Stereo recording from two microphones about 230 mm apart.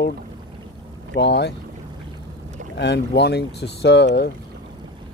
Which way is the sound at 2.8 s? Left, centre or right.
Left.